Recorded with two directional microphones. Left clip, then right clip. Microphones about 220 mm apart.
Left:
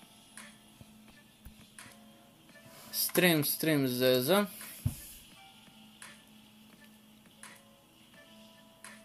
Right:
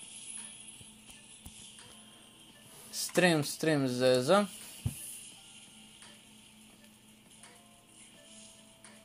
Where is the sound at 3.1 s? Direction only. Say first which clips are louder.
Even; 15° right (ahead or behind).